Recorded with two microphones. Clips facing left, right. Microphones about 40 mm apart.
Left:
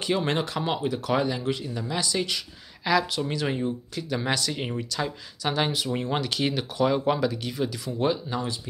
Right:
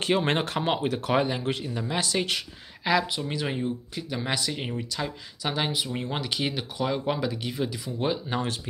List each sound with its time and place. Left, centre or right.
0.1 s speech: right; by 7.2 s centre
7.2 s speech: centre
8.3 s speech: right